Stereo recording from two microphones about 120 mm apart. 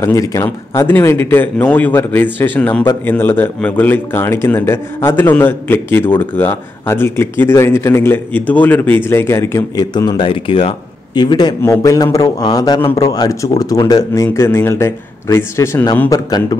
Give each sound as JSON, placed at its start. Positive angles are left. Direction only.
{"t": 0.0, "sound": "a man's voice", "side_deg": 25}
{"t": 16.1, "sound": "a man's voice", "side_deg": 35}